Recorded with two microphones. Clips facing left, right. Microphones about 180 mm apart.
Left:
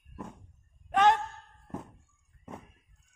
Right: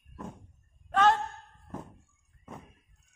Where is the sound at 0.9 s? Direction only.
15° left (ahead or behind).